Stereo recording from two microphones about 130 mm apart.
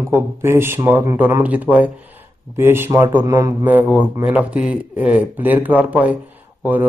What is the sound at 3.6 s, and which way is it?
Speech, 15° right (ahead or behind).